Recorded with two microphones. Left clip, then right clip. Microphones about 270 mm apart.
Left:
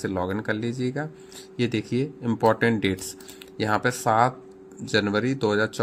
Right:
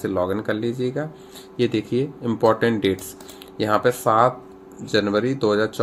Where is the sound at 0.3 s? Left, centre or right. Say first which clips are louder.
Right 4 dB; left.